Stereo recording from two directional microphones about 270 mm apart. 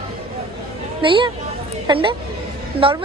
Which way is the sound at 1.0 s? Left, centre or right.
Centre.